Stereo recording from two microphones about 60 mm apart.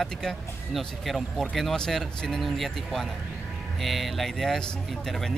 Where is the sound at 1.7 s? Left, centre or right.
Centre.